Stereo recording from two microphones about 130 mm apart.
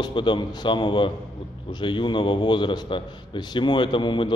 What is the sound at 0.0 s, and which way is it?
A man's voice, 40° left (ahead or behind).